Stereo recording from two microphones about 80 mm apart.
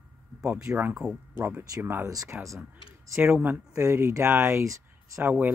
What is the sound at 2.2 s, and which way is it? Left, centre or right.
Speech, right.